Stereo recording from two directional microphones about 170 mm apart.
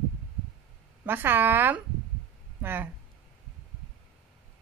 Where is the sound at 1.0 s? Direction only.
10° right (ahead or behind).